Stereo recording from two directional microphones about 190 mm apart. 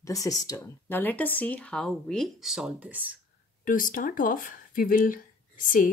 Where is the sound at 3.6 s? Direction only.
45° left (ahead or behind).